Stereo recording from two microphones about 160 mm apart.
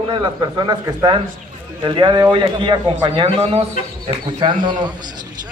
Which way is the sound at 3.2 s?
40° right (ahead or behind).